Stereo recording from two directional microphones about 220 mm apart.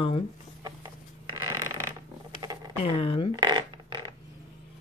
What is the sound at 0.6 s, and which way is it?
Creak, 15° right (ahead or behind).